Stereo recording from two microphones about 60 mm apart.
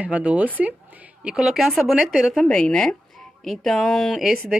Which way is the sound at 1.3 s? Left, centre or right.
Centre.